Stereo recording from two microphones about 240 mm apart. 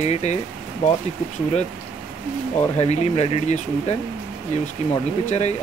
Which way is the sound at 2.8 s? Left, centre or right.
Left.